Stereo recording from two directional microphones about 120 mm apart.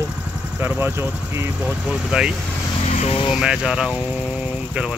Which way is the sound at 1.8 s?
5° right (ahead or behind).